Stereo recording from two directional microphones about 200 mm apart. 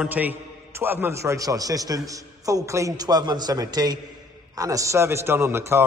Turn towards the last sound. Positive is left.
turn(degrees=-10)  # may be behind; listen again after turning